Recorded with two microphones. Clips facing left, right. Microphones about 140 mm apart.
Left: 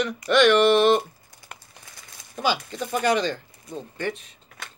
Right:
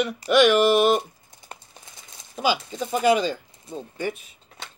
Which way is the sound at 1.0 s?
20° right (ahead or behind).